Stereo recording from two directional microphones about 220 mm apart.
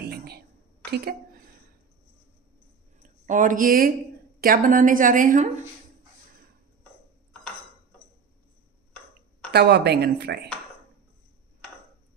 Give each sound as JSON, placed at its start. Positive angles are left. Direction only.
{"t": 0.0, "sound": "a sound", "side_deg": -45}
{"t": 0.9, "sound": "a woman's voice", "side_deg": -45}
{"t": 3.0, "sound": "a woman's voice", "side_deg": -35}
{"t": 9.5, "sound": "speech", "side_deg": -50}